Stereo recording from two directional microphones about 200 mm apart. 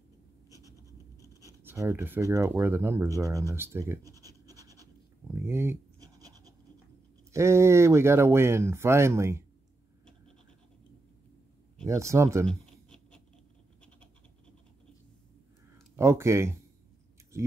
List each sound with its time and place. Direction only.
0.7 s scratch: 15° left (ahead or behind)
1.6 s speech: 10° right (ahead or behind)
5.3 s scratch: 10° right (ahead or behind)
7.3 s speech: 15° right (ahead or behind)
11.8 s speech: 15° right (ahead or behind)
12.4 s a sound: 5° left (ahead or behind)
16.0 s speech: 15° right (ahead or behind)